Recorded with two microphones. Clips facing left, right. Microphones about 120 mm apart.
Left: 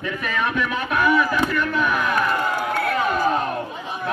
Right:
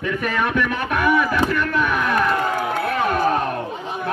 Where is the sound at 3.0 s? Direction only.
55° right (ahead or behind).